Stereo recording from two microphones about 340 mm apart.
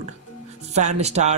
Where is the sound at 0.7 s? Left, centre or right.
Centre.